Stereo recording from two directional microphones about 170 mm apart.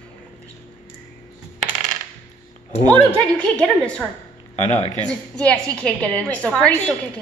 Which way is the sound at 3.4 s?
5° left (ahead or behind).